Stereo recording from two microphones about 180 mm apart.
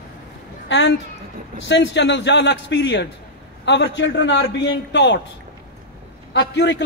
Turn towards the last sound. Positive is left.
turn(degrees=75)  # may be behind; listen again after turning